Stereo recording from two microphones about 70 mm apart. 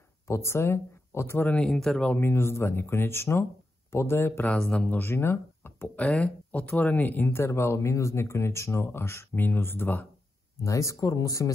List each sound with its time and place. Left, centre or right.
0.3 s speech: left
1.5 s speech: centre
2.1 s speech: left
4.5 s speech: centre
4.8 s speech: left
6.0 s speech: centre
10.6 s speech: left